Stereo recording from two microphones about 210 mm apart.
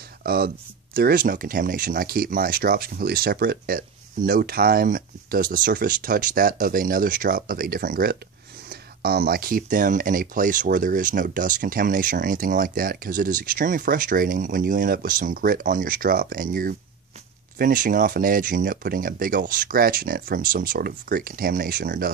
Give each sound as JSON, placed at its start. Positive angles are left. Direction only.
{"t": 0.2, "sound": "speech", "side_deg": -45}